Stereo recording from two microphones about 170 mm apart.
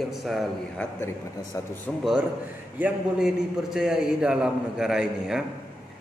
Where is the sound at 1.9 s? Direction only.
Centre (ahead or behind).